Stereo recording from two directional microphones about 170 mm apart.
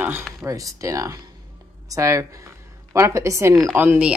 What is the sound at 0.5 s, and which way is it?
Speech, 20° right (ahead or behind).